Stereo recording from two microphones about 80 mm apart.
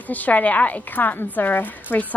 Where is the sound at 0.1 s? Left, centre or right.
Centre.